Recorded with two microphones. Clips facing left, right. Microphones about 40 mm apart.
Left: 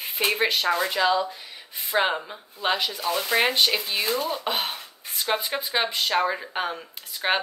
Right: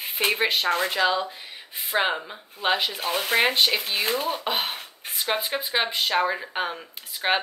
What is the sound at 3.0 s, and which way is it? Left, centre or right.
Speech, right.